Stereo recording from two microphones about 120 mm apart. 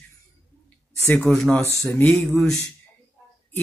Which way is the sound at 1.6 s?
20° left (ahead or behind).